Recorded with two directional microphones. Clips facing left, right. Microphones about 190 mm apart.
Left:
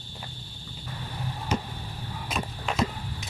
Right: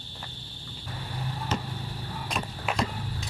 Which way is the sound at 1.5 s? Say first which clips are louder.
Left 4 dB; 10° left (ahead or behind).